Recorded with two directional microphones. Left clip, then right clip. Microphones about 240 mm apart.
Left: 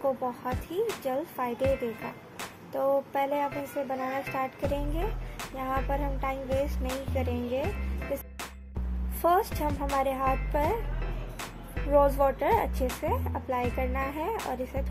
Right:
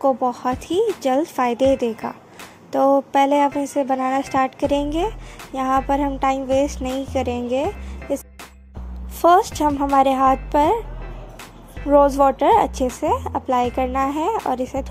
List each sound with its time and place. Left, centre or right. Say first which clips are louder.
0.0 s a woman's voice: right 11 dB; right
9.2 s a woman's voice: right 11 dB; right
11.9 s a woman's voice: right 9 dB; right